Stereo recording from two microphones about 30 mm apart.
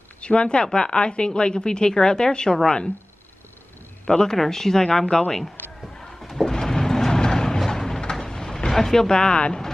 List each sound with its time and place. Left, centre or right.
0.2 s a woman's voice: left
4.1 s a woman's voice: left
5.8 s a sound: left
7.7 s vehicle: centre